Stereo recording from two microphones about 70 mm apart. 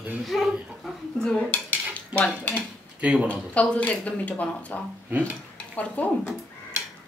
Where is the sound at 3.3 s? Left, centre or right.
Centre.